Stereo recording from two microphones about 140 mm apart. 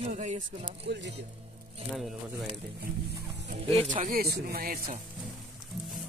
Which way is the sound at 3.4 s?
55° right (ahead or behind).